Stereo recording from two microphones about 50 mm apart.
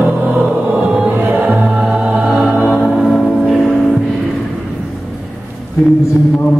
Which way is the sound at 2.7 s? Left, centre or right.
Centre.